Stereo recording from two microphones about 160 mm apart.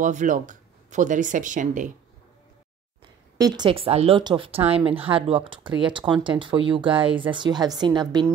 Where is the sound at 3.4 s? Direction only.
25° right (ahead or behind).